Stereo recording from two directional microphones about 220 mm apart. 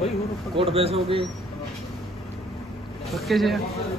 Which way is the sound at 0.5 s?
25° right (ahead or behind).